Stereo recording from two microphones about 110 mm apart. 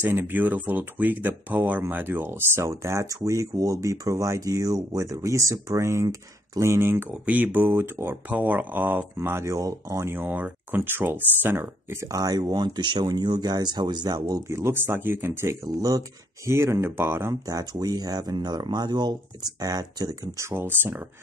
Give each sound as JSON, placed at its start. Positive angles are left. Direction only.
{"t": 0.0, "sound": "speech", "side_deg": -20}
{"t": 14.5, "sound": "speech", "side_deg": -25}